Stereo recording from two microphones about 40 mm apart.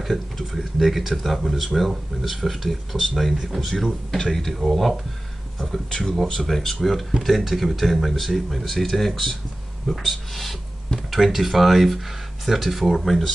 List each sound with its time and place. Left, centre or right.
0.0 s speech: centre
5.9 s speech: centre